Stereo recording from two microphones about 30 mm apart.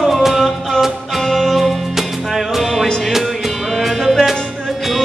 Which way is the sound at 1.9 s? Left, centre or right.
Centre.